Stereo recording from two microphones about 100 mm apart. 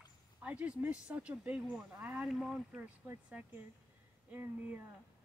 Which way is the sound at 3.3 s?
15° right (ahead or behind).